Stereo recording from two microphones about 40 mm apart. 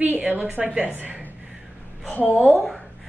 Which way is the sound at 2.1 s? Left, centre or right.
Left.